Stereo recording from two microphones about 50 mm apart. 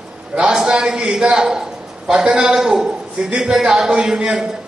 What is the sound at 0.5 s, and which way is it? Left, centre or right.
A man's voice, centre.